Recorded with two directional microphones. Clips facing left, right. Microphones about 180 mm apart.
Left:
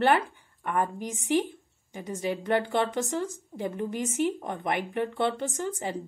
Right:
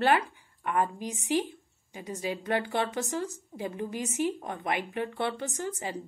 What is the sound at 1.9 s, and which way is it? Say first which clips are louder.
Speech: left 3 dB; 50° left (ahead or behind).